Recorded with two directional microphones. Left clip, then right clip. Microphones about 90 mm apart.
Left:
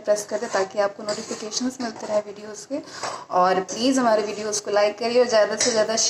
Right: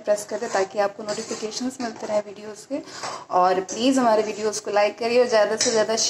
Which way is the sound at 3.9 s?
20° right (ahead or behind).